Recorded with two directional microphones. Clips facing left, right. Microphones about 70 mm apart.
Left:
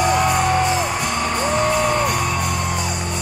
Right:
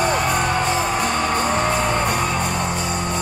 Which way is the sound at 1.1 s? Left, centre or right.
Right.